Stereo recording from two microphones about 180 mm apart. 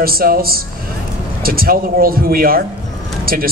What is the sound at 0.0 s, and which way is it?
Speech, 55° right (ahead or behind).